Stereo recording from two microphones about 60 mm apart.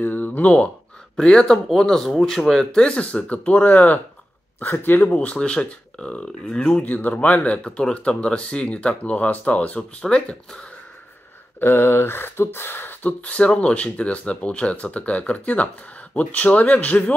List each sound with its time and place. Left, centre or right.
0.0 s speech: left
1.1 s speech: centre
4.6 s a sound: left
5.1 s speech: left
6.8 s speech: left
11.6 s a sound: left
12.5 s speech: left
13.2 s speech: left